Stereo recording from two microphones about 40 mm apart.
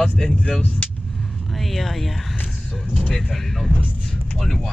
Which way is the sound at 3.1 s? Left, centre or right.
Centre.